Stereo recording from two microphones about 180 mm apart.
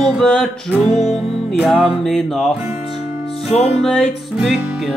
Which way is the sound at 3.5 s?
35° left (ahead or behind).